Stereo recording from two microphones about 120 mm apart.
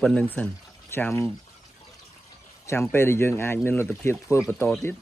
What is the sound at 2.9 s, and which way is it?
Speech, 20° left (ahead or behind).